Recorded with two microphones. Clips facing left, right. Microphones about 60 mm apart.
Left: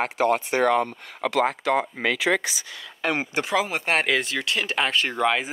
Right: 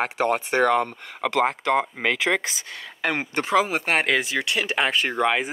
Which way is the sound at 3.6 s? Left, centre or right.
Centre.